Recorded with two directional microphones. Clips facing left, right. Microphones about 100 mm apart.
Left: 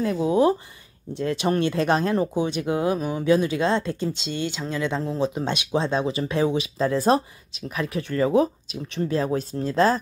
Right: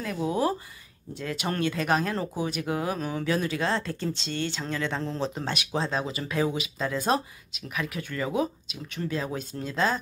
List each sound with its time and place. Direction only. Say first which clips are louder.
0.0 s speech: left 7 dB; 25° left (ahead or behind)